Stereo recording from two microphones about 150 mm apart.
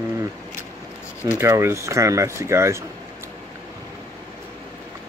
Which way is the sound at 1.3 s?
15° right (ahead or behind).